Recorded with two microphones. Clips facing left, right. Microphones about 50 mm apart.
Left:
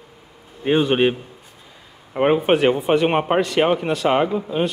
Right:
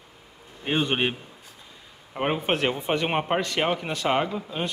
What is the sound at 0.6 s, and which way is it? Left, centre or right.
Speech, centre.